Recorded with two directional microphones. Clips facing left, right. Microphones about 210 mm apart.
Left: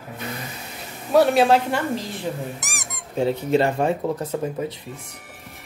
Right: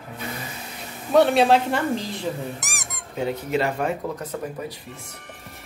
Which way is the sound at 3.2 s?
30° left (ahead or behind).